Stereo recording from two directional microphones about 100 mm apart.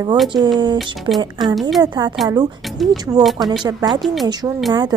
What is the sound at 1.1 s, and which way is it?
Speech, 40° right (ahead or behind).